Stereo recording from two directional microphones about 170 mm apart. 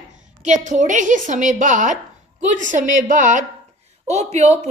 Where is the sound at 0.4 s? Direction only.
45° right (ahead or behind).